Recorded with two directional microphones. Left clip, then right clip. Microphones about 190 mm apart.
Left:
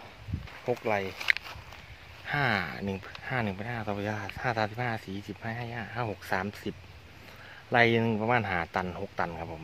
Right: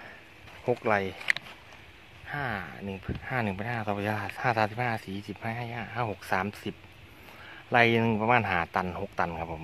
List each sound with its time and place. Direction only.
0.7 s speech: 40° right (ahead or behind)
2.2 s speech: 15° left (ahead or behind)
3.3 s speech: 15° right (ahead or behind)
7.7 s a man's voice: 15° right (ahead or behind)